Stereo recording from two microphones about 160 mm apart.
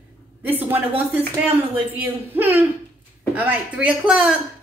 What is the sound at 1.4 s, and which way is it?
A woman's voice, 10° right (ahead or behind).